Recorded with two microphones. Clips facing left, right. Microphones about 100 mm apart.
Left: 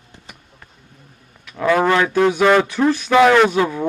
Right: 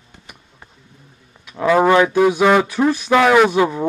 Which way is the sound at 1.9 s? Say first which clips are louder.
Right 2 dB; 15° right (ahead or behind).